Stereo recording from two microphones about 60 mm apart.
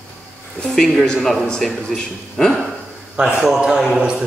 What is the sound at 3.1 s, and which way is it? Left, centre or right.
A man's voice, centre.